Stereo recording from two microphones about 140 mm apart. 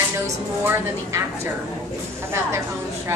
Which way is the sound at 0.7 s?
20° right (ahead or behind).